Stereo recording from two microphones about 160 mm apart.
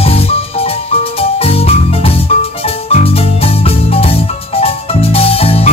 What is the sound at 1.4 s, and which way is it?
Music, 40° left (ahead or behind).